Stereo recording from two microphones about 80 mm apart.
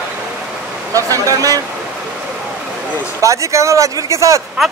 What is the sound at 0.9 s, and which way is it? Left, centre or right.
Speech, right.